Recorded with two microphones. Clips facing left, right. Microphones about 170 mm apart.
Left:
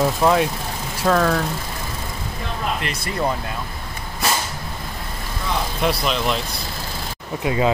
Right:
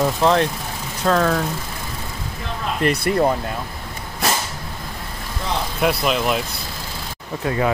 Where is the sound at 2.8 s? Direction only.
55° right (ahead or behind).